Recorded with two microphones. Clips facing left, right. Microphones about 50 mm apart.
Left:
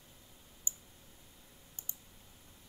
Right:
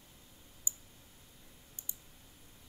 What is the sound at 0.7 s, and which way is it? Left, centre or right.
Clicking, left.